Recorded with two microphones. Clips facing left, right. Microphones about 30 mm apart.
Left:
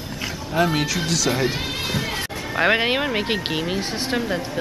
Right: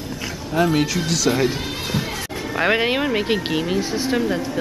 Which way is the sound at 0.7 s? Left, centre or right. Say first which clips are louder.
Right 2 dB; centre.